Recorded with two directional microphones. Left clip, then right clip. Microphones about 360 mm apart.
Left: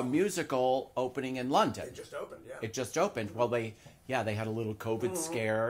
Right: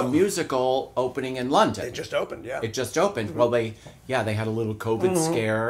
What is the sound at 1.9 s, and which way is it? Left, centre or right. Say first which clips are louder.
Speech: right 14 dB; right.